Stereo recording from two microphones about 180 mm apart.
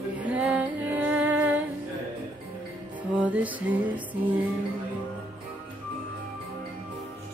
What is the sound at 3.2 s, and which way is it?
Music, 10° right (ahead or behind).